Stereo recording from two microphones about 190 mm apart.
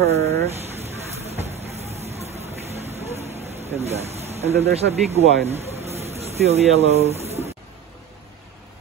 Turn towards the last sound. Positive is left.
turn(degrees=-35)  # may be behind; listen again after turning